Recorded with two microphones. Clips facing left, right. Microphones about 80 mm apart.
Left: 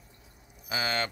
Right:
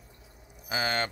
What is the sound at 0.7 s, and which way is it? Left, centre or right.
Speech, right.